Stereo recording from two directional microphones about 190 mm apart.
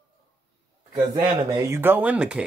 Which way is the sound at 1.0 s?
20° right (ahead or behind).